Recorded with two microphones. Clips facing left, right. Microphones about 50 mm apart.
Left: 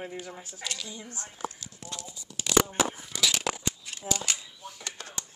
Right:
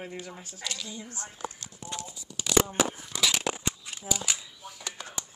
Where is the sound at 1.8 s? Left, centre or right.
Right.